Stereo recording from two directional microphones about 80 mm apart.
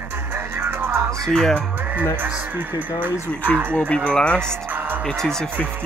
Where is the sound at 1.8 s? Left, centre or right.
Right.